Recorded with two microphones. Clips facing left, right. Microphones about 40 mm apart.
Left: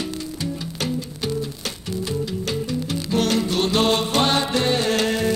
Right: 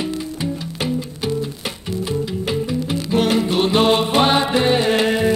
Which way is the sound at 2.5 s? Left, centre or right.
Centre.